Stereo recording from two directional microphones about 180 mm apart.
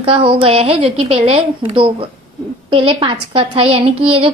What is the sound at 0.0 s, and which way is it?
A woman's voice, 30° right (ahead or behind).